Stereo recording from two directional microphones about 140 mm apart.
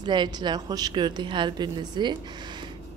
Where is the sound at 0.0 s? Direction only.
30° right (ahead or behind).